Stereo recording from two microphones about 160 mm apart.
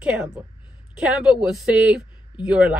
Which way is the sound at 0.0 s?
5° right (ahead or behind).